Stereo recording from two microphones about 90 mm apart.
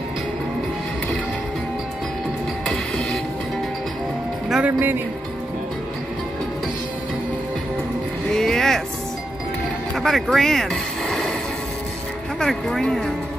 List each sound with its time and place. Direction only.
2.6 s train: 10° left (ahead or behind)
4.5 s speech: 15° right (ahead or behind)
8.3 s vehicle: 5° left (ahead or behind)
9.9 s a sound: centre (ahead or behind)
12.4 s speech: 5° left (ahead or behind)